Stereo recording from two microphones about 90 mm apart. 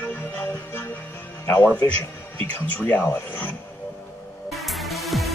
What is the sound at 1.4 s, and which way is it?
Speech, 25° left (ahead or behind).